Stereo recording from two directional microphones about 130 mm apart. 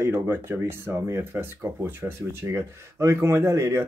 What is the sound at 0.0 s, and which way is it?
Speech, 20° right (ahead or behind).